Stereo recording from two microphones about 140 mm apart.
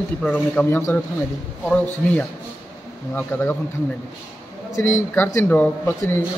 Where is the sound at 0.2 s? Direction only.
10° left (ahead or behind).